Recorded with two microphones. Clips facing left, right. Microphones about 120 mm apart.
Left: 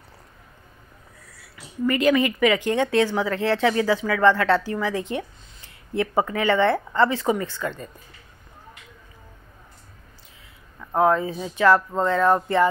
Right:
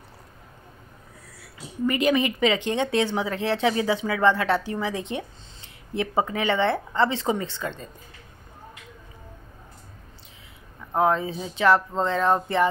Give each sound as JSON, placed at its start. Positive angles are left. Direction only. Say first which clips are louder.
{"t": 1.9, "sound": "speech", "louder": "left 2 dB", "side_deg": -20}
{"t": 11.0, "sound": "speech", "louder": "left 2 dB", "side_deg": -20}